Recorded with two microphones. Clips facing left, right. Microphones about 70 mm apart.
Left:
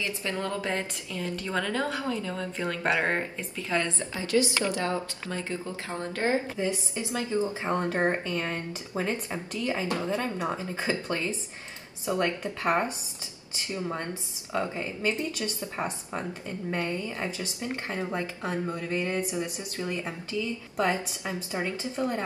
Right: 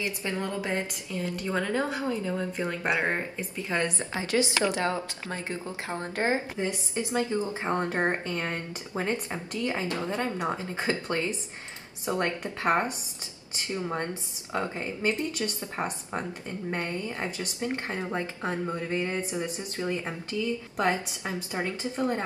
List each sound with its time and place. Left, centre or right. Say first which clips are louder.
0.0 s speech: even; right